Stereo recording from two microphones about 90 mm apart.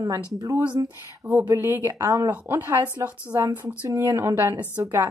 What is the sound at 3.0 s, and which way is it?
Speech, 40° right (ahead or behind).